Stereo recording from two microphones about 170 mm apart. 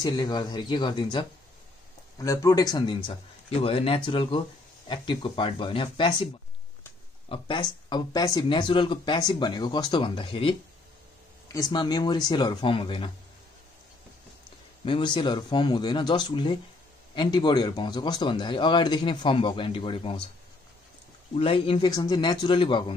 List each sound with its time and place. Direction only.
0.0 s speech: 25° left (ahead or behind)
7.2 s speech: 30° left (ahead or behind)
11.5 s speech: 25° left (ahead or behind)
14.9 s speech: 30° left (ahead or behind)
21.4 s speech: 35° left (ahead or behind)